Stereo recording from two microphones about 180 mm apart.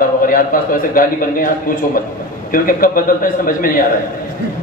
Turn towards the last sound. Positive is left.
turn(degrees=50)  # may be behind; listen again after turning